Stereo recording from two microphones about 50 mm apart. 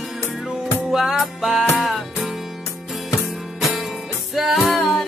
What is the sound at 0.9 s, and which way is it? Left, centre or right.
Music, centre.